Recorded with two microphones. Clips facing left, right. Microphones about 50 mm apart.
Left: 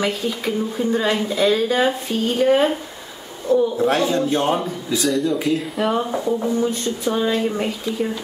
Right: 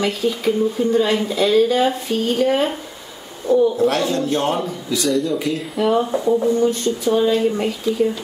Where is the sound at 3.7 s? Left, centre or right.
Centre.